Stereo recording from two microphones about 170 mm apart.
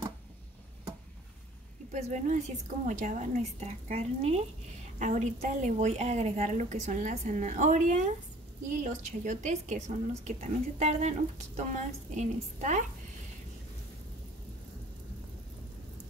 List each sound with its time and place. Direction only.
1.9 s a woman's voice: 40° right (ahead or behind)